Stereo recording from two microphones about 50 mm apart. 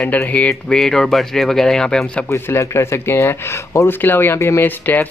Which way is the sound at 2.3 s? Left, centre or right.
Left.